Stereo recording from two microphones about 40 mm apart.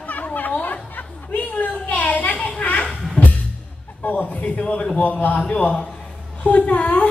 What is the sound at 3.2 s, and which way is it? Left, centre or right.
Music, left.